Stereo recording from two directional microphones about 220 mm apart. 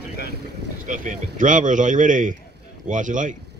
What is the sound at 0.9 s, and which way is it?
Speech, 35° right (ahead or behind).